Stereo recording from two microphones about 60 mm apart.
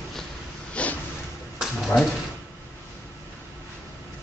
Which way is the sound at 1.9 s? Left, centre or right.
Left.